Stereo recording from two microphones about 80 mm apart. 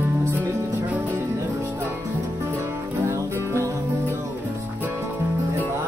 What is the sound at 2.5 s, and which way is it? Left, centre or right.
Music, right.